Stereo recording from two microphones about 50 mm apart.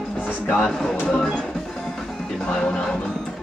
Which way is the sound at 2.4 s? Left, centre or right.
Centre.